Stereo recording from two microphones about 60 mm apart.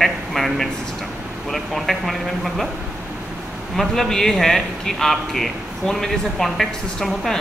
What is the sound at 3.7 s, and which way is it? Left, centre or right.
A man's voice, centre.